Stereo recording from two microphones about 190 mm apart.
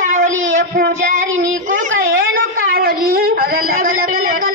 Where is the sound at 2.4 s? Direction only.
50° right (ahead or behind).